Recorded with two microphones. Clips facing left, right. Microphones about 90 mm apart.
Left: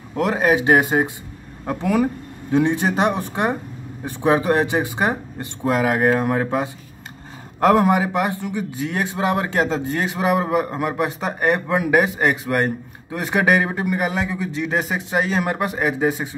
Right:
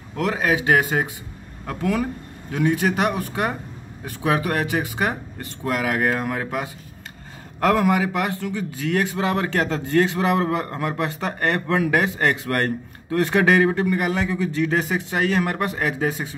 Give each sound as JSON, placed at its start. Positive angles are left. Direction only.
{"t": 0.1, "sound": "a man's voice", "side_deg": 20}